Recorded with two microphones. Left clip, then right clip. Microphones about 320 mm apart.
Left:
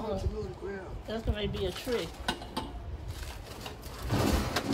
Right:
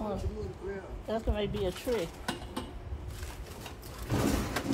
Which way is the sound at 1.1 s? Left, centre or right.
Centre.